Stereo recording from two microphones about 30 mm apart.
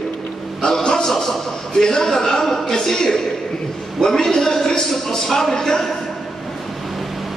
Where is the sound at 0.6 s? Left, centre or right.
Left.